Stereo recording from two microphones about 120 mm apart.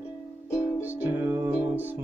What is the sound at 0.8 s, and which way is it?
Music, 15° right (ahead or behind).